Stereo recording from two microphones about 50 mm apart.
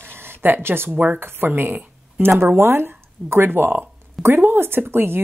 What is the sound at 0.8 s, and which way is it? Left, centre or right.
Speech, right.